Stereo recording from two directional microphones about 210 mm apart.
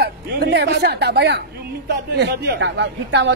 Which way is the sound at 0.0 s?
50° right (ahead or behind).